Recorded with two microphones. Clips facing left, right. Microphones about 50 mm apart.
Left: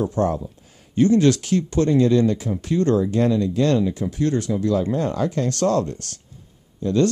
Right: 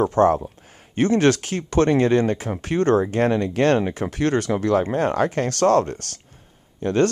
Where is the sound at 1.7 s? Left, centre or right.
Right.